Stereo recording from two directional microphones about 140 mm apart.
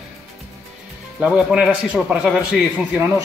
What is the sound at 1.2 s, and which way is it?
A man's voice, 5° right (ahead or behind).